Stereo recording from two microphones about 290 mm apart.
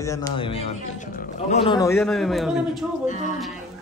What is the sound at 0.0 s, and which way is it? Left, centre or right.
A man's voice, centre.